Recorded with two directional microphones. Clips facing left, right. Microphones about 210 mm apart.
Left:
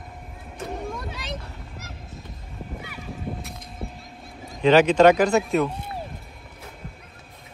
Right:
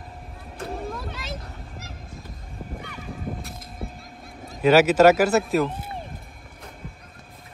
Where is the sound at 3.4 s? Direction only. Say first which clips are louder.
Even; centre (ahead or behind).